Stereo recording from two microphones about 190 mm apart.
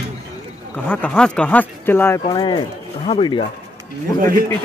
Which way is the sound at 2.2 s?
25° left (ahead or behind).